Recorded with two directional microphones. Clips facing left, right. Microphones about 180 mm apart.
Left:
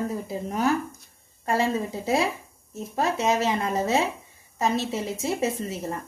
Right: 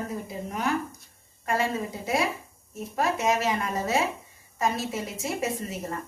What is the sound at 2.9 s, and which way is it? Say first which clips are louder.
Speech: left 1 dB; 25° left (ahead or behind).